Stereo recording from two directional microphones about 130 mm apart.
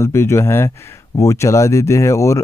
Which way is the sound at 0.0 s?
20° left (ahead or behind).